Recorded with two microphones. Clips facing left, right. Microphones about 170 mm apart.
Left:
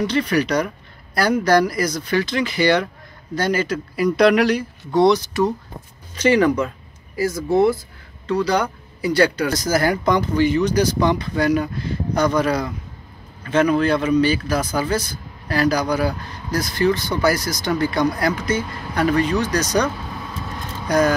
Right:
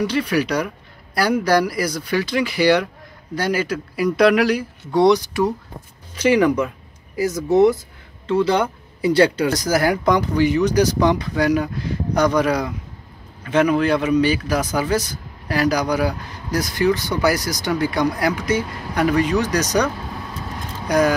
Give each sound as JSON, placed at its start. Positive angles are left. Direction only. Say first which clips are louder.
{"t": 0.0, "sound": "speech", "louder": "even", "side_deg": -10}
{"t": 9.5, "sound": "speech", "louder": "right 1 dB", "side_deg": -10}